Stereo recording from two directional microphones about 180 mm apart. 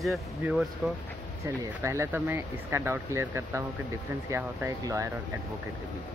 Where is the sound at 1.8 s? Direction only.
15° right (ahead or behind).